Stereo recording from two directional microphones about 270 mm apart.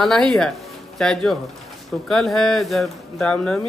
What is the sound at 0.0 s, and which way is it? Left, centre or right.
Speech, centre.